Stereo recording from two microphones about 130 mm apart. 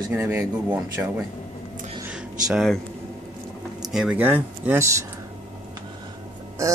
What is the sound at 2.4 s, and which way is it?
Speech, 5° right (ahead or behind).